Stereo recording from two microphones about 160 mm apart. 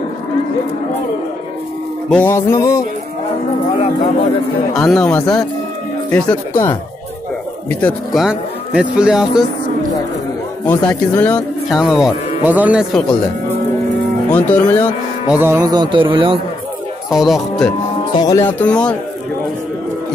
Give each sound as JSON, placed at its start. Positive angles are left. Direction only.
{"t": 2.0, "sound": "speech", "side_deg": 10}
{"t": 4.7, "sound": "speech", "side_deg": 5}
{"t": 7.8, "sound": "speech", "side_deg": 0}
{"t": 10.6, "sound": "speech", "side_deg": 10}
{"t": 12.4, "sound": "music", "side_deg": -10}
{"t": 14.3, "sound": "speech", "side_deg": 10}
{"t": 15.2, "sound": "music", "side_deg": -10}
{"t": 15.6, "sound": "speech", "side_deg": -25}
{"t": 17.1, "sound": "speech", "side_deg": 0}
{"t": 18.1, "sound": "speech", "side_deg": 20}